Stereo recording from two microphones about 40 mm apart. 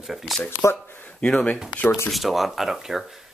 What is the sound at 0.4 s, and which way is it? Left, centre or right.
Speech, left.